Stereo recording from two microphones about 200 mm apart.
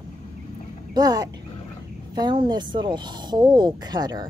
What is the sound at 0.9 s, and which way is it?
Speech, 20° right (ahead or behind).